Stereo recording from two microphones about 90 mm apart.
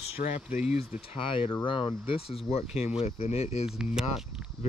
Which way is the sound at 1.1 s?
80° left.